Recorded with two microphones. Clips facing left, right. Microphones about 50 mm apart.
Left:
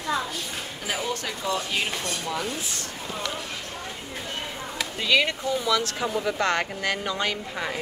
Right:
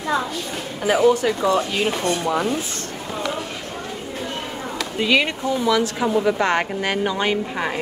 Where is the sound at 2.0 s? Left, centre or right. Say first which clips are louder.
Right 9 dB; right.